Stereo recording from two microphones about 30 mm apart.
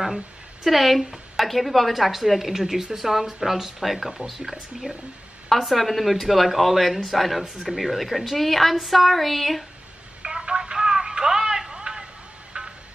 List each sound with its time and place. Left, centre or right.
0.7 s a woman's voice: centre
10.2 s telephone: right
11.8 s a sound: right
12.6 s music: right